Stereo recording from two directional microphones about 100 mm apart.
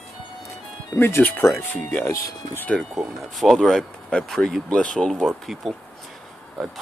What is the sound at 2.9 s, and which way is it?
Speech, centre (ahead or behind).